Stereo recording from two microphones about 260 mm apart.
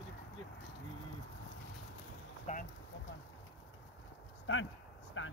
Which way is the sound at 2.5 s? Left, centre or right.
Left.